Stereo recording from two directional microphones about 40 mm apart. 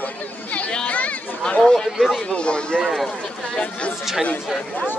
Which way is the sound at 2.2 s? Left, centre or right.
Left.